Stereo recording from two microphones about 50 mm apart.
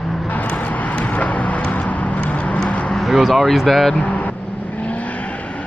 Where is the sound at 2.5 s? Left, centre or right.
Left.